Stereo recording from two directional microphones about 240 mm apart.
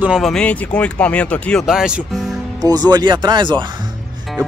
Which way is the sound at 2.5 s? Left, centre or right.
Centre.